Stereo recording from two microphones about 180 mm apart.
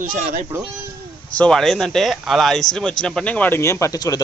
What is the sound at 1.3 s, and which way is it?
Speech, 5° left (ahead or behind).